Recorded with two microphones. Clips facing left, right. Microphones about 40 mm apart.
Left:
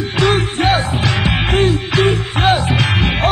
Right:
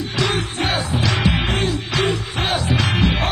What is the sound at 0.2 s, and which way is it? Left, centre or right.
Music, left.